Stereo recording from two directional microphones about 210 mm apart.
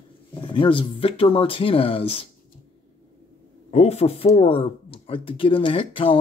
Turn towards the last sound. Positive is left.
turn(degrees=25)  # may be behind; listen again after turning